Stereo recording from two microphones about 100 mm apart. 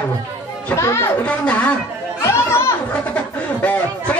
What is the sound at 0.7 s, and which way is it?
Speech, 30° left (ahead or behind).